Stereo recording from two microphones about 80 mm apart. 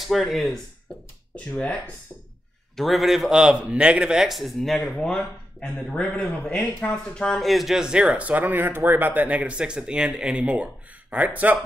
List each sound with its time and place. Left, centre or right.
0.0 s speech: centre
1.5 s speech: centre
2.7 s speech: centre; by 11.6 s right